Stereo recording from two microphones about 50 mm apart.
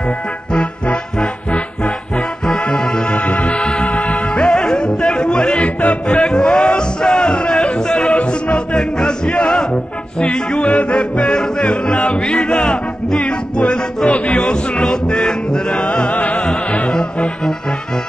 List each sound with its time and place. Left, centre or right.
0.5 s music: centre
2.4 s music: centre
3.2 s music: left
4.5 s music: centre
5.6 s yodeling: left
6.3 s music: centre
10.2 s yodeling: centre
14.8 s music: centre